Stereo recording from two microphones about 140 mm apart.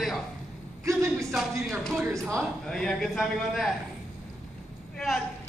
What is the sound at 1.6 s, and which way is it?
A man's voice, 5° left (ahead or behind).